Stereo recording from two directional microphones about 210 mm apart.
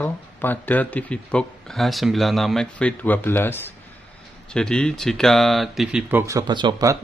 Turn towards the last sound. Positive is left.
turn(degrees=-15)  # may be behind; listen again after turning